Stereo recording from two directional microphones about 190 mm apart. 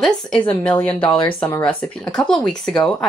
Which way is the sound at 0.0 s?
5° left (ahead or behind).